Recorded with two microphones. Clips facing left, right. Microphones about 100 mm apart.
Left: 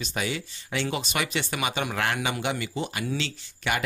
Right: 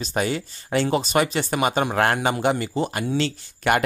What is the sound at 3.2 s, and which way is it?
Speech, 50° right (ahead or behind).